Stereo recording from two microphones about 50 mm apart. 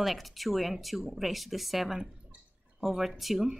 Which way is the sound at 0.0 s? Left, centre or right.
Centre.